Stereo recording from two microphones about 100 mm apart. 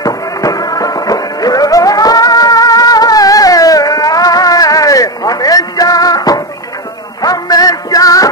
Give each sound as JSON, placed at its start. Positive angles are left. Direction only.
{"t": 0.0, "sound": "music", "side_deg": 35}